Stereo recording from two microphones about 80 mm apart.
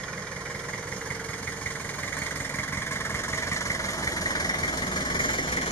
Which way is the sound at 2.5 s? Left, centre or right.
Left.